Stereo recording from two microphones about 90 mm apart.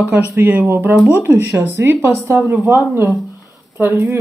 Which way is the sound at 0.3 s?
20° right (ahead or behind).